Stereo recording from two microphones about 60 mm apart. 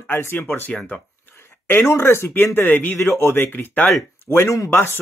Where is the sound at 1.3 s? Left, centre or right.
Left.